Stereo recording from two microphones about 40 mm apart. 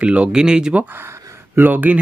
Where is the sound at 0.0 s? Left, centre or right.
Right.